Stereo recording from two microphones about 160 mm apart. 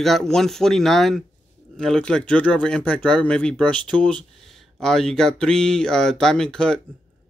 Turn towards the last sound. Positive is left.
turn(degrees=5)  # may be behind; listen again after turning